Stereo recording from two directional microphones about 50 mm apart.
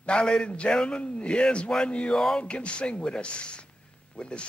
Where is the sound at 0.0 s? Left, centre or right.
Centre.